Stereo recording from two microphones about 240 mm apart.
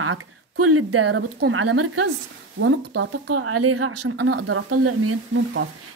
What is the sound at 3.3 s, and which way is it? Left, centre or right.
A woman's voice, right.